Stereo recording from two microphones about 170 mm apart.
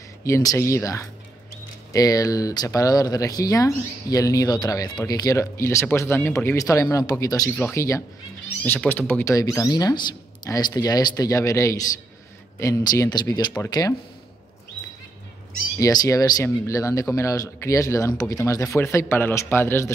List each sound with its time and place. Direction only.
0.2 s speech: 20° left (ahead or behind)
15.8 s speech: 20° left (ahead or behind)